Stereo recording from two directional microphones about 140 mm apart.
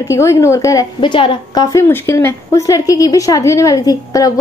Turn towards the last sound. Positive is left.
turn(degrees=25)  # may be behind; listen again after turning